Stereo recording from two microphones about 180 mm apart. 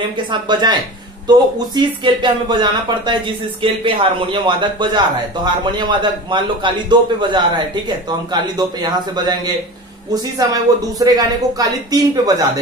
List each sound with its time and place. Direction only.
0.3 s speech: 25° right (ahead or behind)
1.8 s speech: 25° right (ahead or behind)
10.5 s speech: 20° right (ahead or behind)